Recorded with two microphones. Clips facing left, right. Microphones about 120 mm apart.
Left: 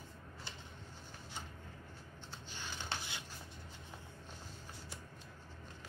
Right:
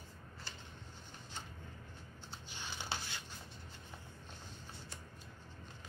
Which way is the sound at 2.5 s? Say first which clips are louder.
Right 1 dB; 10° right (ahead or behind).